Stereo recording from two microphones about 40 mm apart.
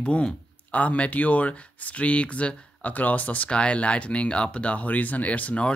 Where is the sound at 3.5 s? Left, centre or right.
Left.